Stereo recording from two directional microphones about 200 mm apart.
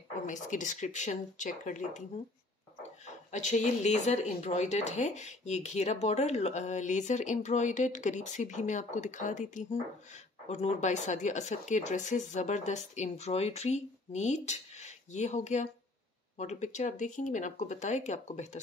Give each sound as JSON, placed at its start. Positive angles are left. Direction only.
{"t": 0.3, "sound": "speech", "side_deg": 40}
{"t": 3.3, "sound": "speech", "side_deg": 35}